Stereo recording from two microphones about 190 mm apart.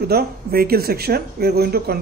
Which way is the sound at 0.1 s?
55° right (ahead or behind).